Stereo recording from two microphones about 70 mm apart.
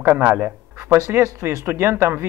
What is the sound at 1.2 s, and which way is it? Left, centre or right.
Speech, right.